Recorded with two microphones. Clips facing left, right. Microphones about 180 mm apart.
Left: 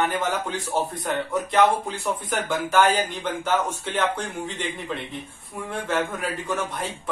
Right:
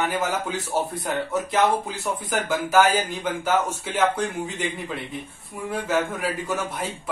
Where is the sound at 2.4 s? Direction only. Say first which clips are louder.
Right 1 dB; 5° right (ahead or behind).